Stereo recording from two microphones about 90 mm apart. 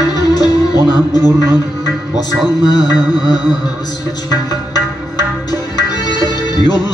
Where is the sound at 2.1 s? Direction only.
50° left (ahead or behind).